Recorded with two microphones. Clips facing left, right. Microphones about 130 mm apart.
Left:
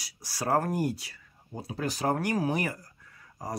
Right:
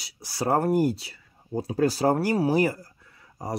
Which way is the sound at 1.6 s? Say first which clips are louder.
Right 9 dB; 35° right (ahead or behind).